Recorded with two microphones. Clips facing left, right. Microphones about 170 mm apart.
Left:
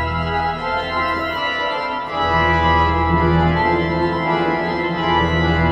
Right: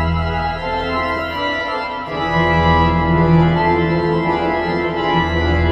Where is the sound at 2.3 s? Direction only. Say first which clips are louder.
Right 3 dB; 30° right (ahead or behind).